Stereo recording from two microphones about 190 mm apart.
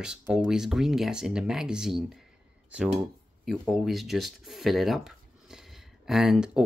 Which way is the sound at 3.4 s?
Centre (ahead or behind).